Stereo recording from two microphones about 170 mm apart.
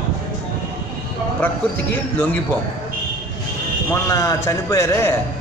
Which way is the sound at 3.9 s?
20° left (ahead or behind).